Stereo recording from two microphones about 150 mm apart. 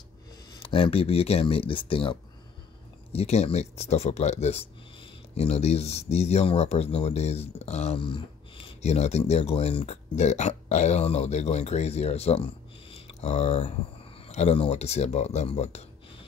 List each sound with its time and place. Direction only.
0.5 s speech: 35° left (ahead or behind)
8.0 s speech: 35° left (ahead or behind)
12.9 s a sound: 40° left (ahead or behind)
14.2 s speech: 45° left (ahead or behind)